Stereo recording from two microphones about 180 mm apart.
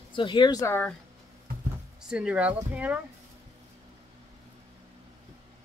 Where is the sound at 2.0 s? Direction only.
5° right (ahead or behind).